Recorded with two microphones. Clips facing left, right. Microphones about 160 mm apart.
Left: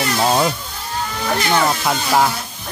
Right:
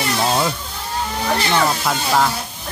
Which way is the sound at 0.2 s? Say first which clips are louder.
Left 3 dB; 20° left (ahead or behind).